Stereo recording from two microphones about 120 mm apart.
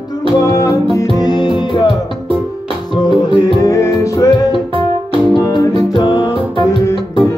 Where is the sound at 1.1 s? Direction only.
40° left (ahead or behind).